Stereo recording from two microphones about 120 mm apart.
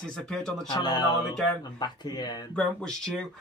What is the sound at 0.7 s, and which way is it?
Speech, 35° left (ahead or behind).